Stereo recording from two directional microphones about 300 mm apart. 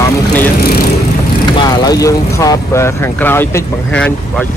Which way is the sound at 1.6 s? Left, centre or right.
Centre.